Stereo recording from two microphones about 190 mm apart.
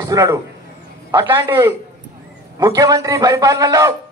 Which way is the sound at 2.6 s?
20° right (ahead or behind).